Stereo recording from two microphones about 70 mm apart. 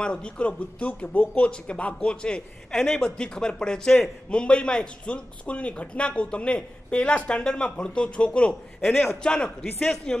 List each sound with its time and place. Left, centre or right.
0.0 s a man's voice: centre